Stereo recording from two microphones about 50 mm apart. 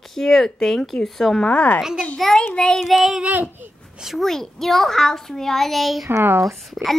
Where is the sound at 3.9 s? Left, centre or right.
Centre.